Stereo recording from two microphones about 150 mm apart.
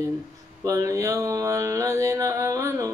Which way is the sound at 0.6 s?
20° right (ahead or behind).